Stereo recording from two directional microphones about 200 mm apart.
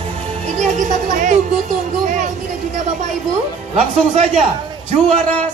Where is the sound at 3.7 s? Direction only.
30° right (ahead or behind).